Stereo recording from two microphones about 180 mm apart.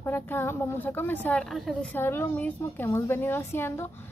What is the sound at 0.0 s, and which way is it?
Speech, 10° left (ahead or behind).